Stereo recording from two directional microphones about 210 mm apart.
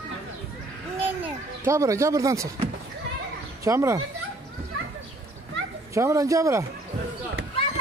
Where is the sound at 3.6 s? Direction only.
15° right (ahead or behind).